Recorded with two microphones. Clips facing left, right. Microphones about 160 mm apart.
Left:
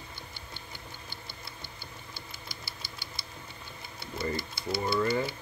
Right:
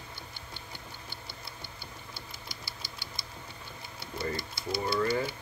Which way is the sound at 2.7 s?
50° left (ahead or behind).